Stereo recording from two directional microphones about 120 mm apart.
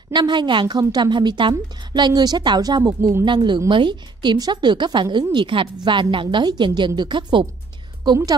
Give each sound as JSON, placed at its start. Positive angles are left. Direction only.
{"t": 0.1, "sound": "a woman's voice", "side_deg": -40}